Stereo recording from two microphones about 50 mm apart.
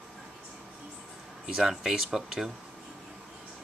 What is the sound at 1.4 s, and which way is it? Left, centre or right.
Speech, centre.